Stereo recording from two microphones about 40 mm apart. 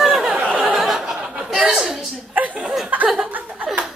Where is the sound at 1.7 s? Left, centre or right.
Centre.